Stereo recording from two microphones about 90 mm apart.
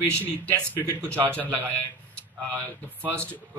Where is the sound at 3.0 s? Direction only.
15° left (ahead or behind).